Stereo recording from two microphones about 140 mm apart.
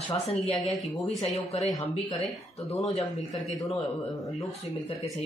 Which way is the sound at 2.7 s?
45° left (ahead or behind).